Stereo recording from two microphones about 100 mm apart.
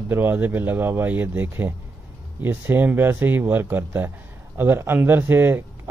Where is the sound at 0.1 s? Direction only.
20° right (ahead or behind).